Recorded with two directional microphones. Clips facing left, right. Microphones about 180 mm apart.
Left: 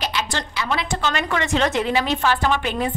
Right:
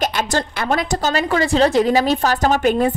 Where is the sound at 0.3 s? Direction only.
45° right (ahead or behind).